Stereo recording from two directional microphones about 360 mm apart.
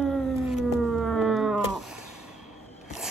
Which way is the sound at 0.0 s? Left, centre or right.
Centre.